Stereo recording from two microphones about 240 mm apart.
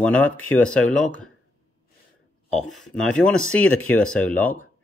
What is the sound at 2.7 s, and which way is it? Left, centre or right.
Speech, centre.